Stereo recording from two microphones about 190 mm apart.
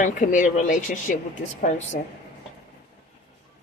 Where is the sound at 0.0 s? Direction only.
40° left (ahead or behind).